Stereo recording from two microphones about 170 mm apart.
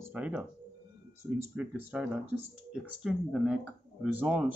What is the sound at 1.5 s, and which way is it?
Speech, 5° right (ahead or behind).